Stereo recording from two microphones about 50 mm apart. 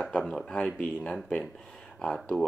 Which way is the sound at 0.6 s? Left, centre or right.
Left.